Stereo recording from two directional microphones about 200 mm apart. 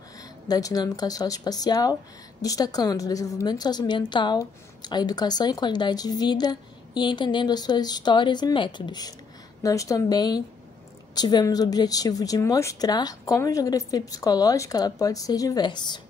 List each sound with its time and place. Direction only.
0.2 s a woman's voice: 15° left (ahead or behind)